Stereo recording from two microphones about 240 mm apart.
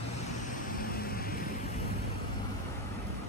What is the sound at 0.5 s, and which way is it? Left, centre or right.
Vehicle, left.